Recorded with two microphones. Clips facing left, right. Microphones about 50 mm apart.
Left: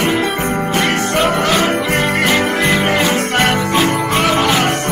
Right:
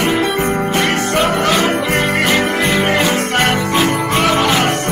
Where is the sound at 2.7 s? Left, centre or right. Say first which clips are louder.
Even; left.